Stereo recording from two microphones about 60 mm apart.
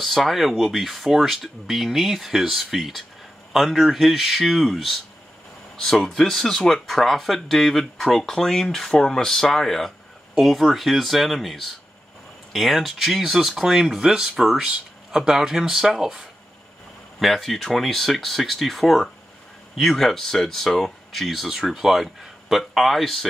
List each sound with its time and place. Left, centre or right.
0.0 s speech: centre